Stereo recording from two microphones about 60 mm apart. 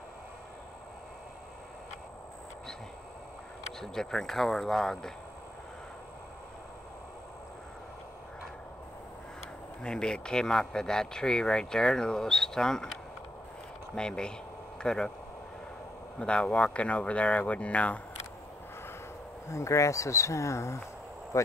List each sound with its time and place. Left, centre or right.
3.8 s speech: centre
9.8 s speech: centre
13.9 s speech: centre
16.2 s speech: centre
19.4 s speech: left